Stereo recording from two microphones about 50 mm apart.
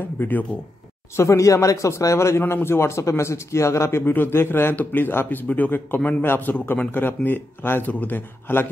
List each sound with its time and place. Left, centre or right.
0.0 s speech: left
1.1 s speech: left
4.0 s a man's voice: left
4.7 s a man's voice: left